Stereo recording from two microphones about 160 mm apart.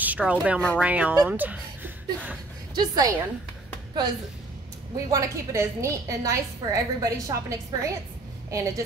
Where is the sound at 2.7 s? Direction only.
25° right (ahead or behind).